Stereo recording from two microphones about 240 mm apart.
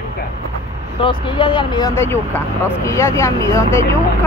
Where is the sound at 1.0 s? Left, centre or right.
Left.